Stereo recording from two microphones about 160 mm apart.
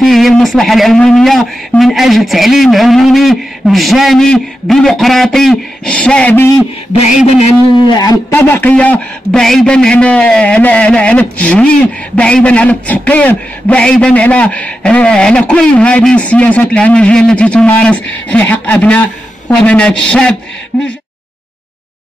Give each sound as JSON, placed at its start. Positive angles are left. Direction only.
{"t": 0.0, "sound": "speech", "side_deg": 0}
{"t": 6.9, "sound": "speech", "side_deg": 45}
{"t": 7.9, "sound": "a man's voice", "side_deg": 25}